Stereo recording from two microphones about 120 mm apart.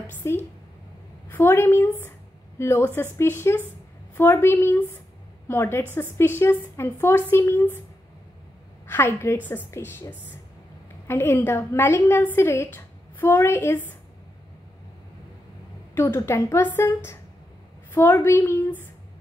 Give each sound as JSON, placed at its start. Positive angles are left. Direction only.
{"t": 0.0, "sound": "a sound", "side_deg": 20}
{"t": 1.3, "sound": "a woman's voice", "side_deg": 20}
{"t": 8.8, "sound": "a woman's voice", "side_deg": 20}
{"t": 15.9, "sound": "a woman's voice", "side_deg": 20}